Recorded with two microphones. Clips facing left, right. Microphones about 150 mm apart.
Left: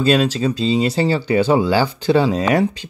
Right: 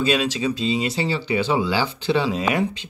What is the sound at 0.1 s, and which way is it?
Speech, 40° left (ahead or behind).